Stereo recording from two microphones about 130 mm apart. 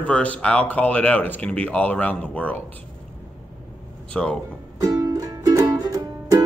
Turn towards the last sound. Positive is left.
turn(degrees=-25)  # may be behind; listen again after turning